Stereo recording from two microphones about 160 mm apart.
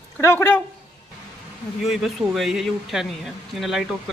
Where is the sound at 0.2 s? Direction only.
15° left (ahead or behind).